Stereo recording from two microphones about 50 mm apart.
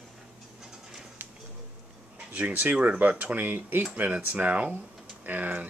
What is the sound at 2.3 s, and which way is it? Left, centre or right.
Speech, right.